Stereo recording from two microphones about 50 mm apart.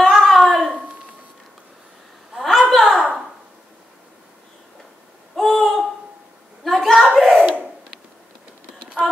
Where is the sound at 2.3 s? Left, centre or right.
Centre.